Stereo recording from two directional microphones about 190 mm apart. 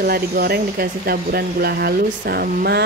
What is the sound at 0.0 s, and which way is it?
Speech, 55° right (ahead or behind).